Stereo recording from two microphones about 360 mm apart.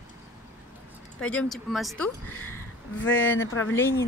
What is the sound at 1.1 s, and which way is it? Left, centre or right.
Speech, centre.